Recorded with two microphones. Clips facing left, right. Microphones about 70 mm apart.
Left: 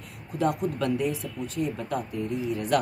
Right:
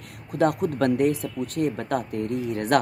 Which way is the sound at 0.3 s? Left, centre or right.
Right.